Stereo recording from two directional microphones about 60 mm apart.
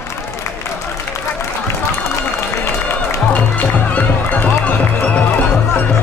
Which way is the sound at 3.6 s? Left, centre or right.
Left.